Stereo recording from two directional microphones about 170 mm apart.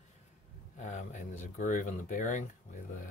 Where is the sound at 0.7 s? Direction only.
45° left (ahead or behind).